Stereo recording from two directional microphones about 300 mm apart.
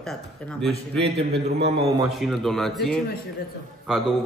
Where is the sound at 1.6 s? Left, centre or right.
Right.